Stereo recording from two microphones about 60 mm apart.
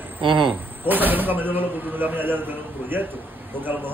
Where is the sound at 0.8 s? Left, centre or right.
Right.